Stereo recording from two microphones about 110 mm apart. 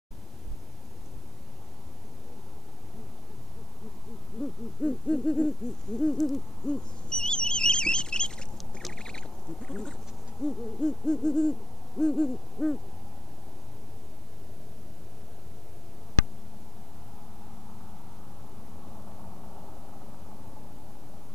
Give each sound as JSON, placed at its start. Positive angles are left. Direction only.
{"t": 4.4, "sound": "hoot", "side_deg": 10}
{"t": 5.9, "sound": "owl", "side_deg": 5}
{"t": 10.4, "sound": "hoot", "side_deg": 5}